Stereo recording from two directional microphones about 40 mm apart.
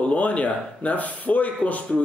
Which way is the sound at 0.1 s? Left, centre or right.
Left.